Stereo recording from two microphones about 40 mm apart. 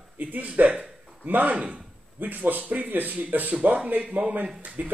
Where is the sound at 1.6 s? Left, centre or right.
Right.